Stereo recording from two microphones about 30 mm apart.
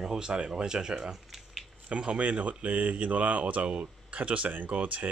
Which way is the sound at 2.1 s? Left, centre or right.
Right.